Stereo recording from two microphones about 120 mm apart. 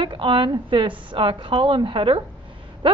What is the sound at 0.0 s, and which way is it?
A woman's voice, 45° right (ahead or behind).